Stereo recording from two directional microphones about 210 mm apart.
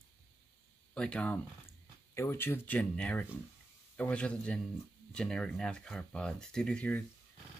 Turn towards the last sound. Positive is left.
turn(degrees=5)  # may be behind; listen again after turning